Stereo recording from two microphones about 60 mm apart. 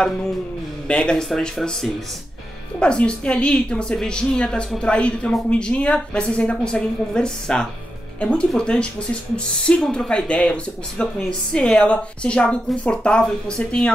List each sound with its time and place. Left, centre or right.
0.8 s a woman's voice: centre